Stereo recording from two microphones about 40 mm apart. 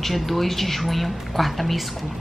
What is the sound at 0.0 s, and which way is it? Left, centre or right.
Speech, centre.